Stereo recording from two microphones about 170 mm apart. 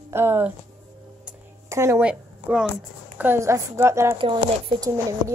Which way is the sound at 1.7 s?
15° right (ahead or behind).